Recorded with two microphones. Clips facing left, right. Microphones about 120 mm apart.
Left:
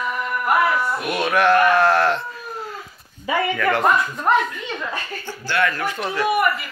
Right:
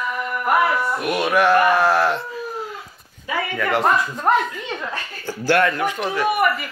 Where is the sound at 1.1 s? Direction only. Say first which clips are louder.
Right 1 dB; 10° right (ahead or behind).